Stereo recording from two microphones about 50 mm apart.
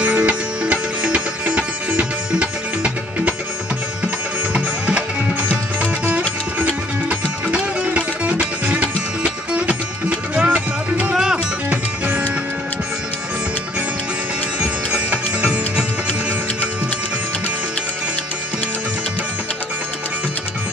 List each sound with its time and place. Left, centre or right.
0.0 s music: right
4.6 s music: right
6.6 s music: right
14.6 s music: centre